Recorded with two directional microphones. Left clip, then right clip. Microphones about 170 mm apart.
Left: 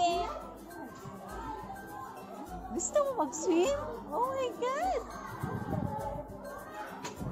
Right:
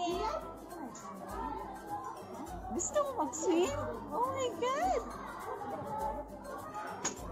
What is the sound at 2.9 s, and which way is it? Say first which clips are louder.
A child's voice: left 4 dB; 20° left (ahead or behind).